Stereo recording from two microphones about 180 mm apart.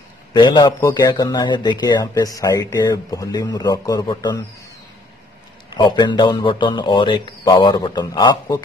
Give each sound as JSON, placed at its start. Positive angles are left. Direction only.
{"t": 0.3, "sound": "speech", "side_deg": 25}
{"t": 5.8, "sound": "speech", "side_deg": 25}